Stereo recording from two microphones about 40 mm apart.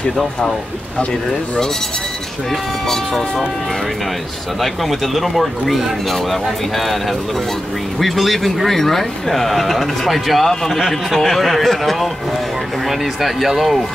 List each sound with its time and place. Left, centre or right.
2.5 s speech: centre
4.6 s speech: centre
10.5 s speech: centre